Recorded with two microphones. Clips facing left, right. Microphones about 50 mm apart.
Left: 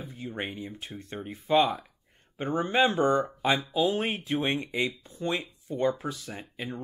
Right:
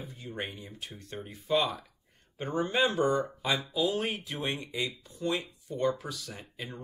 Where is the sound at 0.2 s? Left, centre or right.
Left.